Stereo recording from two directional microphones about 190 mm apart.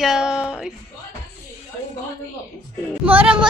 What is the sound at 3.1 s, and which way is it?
Speech, 10° right (ahead or behind).